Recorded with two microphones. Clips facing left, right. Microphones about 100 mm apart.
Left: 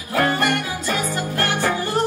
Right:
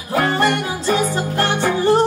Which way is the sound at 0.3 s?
30° right (ahead or behind).